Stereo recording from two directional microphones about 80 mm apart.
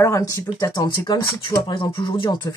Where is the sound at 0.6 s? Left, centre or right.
Left.